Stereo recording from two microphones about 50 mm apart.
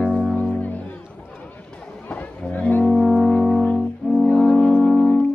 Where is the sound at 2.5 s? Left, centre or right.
Left.